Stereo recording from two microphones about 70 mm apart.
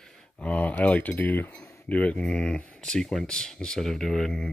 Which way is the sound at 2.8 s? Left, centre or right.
Centre.